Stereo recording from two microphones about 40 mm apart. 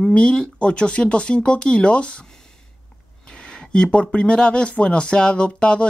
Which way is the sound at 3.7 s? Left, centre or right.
Left.